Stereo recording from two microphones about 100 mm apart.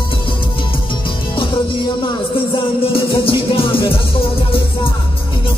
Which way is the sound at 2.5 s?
65° left (ahead or behind).